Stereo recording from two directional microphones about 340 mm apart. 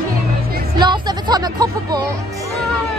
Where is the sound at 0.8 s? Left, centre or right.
Centre.